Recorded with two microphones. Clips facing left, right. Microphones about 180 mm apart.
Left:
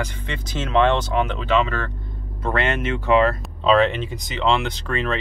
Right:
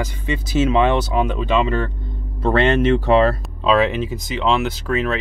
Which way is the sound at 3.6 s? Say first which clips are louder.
Even; 5° right (ahead or behind).